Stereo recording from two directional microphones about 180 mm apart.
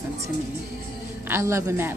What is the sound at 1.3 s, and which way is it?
Speech, 15° right (ahead or behind).